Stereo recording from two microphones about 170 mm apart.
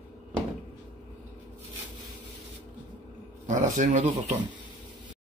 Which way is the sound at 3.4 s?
45° right (ahead or behind).